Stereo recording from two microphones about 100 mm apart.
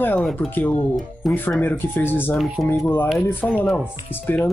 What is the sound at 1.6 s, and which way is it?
Speech, 20° left (ahead or behind).